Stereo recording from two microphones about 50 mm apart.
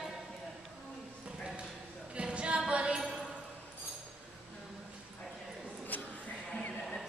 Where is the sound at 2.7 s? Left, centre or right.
Centre.